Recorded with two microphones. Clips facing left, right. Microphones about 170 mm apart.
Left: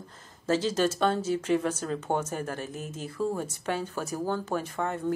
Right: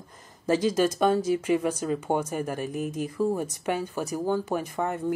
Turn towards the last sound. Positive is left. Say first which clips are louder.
# right 2 dB
turn(degrees=-15)  # may be behind; listen again after turning